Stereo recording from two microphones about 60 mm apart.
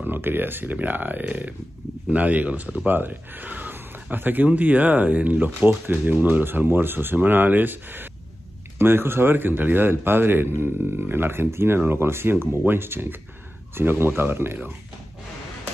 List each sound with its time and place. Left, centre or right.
0.0 s speech: right